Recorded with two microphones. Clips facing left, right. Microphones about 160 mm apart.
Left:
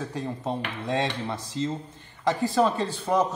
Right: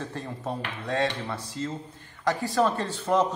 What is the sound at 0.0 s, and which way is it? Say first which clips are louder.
A man's voice: left 3 dB; 10° left (ahead or behind).